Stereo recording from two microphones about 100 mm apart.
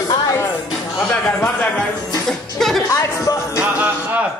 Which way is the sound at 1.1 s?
10° left (ahead or behind).